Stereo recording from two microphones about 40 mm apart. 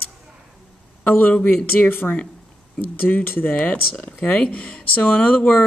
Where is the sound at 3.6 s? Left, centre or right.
Left.